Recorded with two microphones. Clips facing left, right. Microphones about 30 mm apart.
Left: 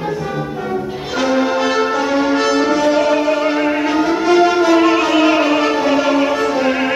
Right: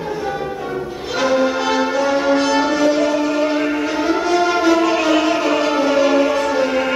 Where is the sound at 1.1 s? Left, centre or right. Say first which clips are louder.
Left 1 dB; centre.